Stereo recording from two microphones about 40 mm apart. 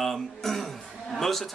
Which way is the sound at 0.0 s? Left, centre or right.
Centre.